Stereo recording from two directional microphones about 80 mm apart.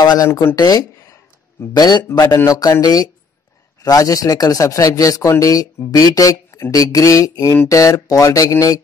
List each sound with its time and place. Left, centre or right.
0.0 s a sound: left
0.3 s speech: left
0.6 s a man's voice: left